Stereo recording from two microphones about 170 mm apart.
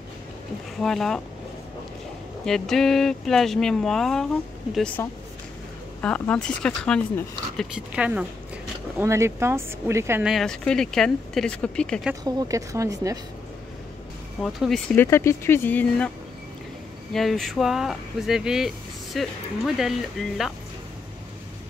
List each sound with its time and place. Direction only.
0.7 s speech: centre (ahead or behind)
2.4 s speech: 5° left (ahead or behind)
7.7 s speech: 5° right (ahead or behind)
8.9 s speech: 15° right (ahead or behind)
10.2 s speech: centre (ahead or behind)
12.3 s speech: 20° right (ahead or behind)
14.4 s speech: centre (ahead or behind)
15.0 s speech: 15° left (ahead or behind)
17.1 s speech: centre (ahead or behind)